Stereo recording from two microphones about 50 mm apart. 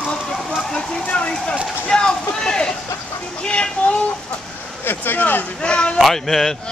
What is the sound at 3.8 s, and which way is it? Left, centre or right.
Speech, left.